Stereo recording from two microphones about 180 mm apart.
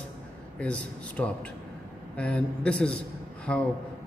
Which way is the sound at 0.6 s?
5° left (ahead or behind).